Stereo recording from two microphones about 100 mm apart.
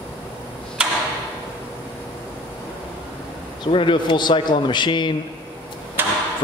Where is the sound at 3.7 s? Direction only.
55° left (ahead or behind).